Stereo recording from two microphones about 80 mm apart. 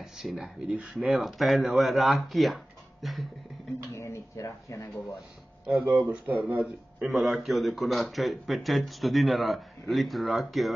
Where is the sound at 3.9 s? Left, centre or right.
Left.